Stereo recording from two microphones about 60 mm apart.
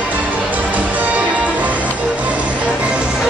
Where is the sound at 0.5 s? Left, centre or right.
Right.